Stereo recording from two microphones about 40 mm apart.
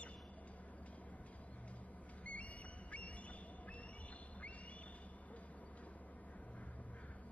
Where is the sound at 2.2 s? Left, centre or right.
Left.